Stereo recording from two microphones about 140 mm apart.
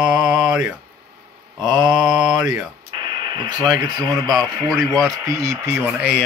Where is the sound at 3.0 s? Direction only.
35° right (ahead or behind).